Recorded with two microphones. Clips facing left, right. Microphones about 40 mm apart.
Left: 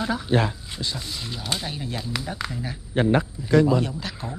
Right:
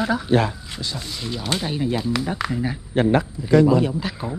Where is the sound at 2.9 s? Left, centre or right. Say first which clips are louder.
Right 2 dB; right.